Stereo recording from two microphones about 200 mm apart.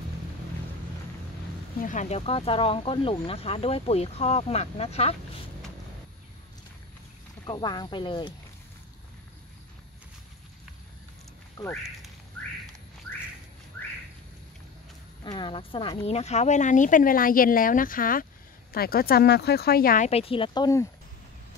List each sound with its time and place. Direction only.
1.8 s speech: 40° left (ahead or behind)
7.4 s speech: 20° left (ahead or behind)
11.6 s speech: 15° left (ahead or behind)
15.2 s speech: 25° left (ahead or behind); by 20.1 s 45° left (ahead or behind)
20.1 s speech: 30° left (ahead or behind)